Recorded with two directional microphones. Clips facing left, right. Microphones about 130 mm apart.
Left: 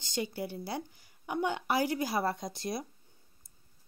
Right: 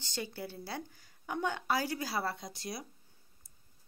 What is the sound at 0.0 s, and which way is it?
A woman's voice, 15° left (ahead or behind).